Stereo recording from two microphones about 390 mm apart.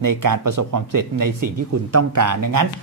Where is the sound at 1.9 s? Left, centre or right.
Right.